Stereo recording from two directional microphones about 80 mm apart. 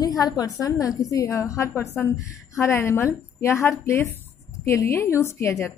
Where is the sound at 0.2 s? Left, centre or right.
Left.